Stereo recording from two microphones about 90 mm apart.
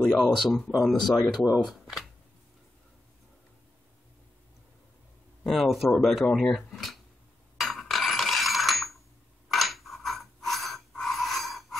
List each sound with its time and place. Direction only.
0.2 s speech: centre (ahead or behind)
5.4 s speech: centre (ahead or behind)
7.5 s dishes: centre (ahead or behind)
9.5 s a sound: centre (ahead or behind)